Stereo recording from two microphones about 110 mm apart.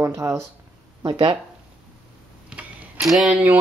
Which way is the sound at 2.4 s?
5° right (ahead or behind).